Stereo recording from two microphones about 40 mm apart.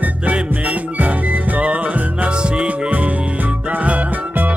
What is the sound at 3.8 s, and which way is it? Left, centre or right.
Music, right.